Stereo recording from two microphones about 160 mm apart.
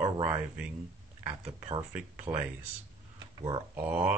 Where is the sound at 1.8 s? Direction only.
15° right (ahead or behind).